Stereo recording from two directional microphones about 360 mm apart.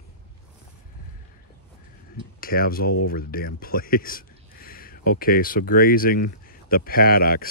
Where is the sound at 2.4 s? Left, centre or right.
Left.